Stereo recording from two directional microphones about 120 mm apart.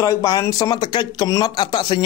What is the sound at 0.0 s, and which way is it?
Speech, 30° left (ahead or behind).